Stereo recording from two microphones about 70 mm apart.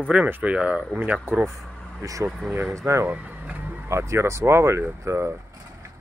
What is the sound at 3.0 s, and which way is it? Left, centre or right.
Music, right.